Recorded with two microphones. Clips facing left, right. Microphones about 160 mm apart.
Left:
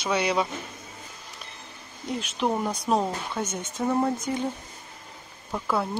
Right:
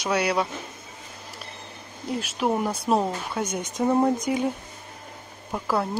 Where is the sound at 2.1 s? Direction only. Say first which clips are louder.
Right 2 dB; 5° right (ahead or behind).